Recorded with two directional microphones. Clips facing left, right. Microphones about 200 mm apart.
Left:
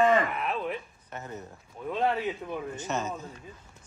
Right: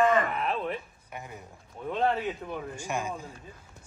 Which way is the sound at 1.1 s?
10° right (ahead or behind).